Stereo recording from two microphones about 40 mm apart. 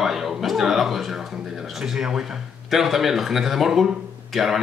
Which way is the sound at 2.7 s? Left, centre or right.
Centre.